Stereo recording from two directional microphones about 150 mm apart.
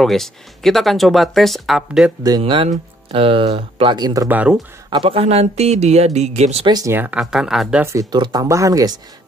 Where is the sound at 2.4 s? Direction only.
35° right (ahead or behind).